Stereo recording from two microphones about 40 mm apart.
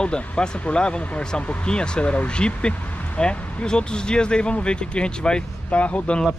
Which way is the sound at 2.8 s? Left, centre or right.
Left.